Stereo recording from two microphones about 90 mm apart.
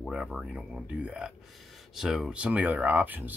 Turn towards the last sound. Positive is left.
turn(degrees=-20)  # may be behind; listen again after turning